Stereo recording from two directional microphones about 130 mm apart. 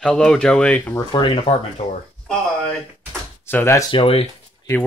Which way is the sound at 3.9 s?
45° left (ahead or behind).